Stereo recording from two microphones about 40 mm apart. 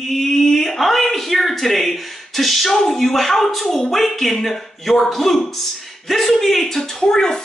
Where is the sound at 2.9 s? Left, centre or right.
Centre.